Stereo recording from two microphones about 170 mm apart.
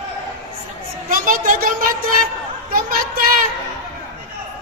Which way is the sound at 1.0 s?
55° right (ahead or behind).